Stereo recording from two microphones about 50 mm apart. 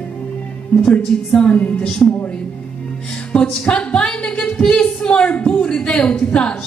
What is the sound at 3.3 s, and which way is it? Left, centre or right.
A woman's voice, left.